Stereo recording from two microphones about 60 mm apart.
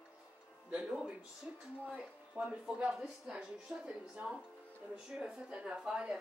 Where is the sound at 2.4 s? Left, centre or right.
Right.